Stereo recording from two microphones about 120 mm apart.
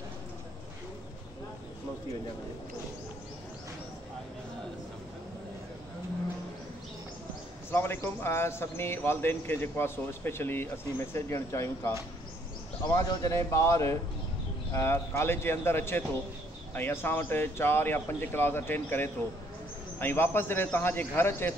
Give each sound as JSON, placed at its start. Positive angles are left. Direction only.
{"t": 7.7, "sound": "a man's voice", "side_deg": 20}
{"t": 12.9, "sound": "a man's voice", "side_deg": 30}